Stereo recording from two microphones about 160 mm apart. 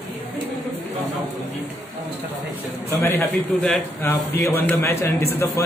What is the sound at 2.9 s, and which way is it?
A man's voice, 15° left (ahead or behind).